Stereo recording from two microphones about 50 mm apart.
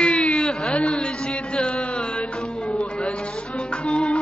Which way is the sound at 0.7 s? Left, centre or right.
Centre.